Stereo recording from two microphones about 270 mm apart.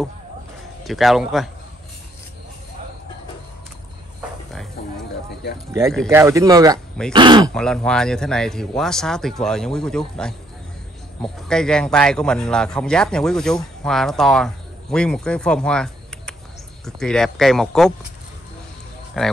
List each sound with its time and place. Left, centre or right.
0.8 s a man's voice: centre
5.7 s speech: centre
7.5 s a man's voice: centre
19.2 s a man's voice: centre